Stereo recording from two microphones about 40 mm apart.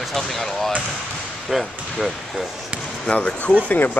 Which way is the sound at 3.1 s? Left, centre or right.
Left.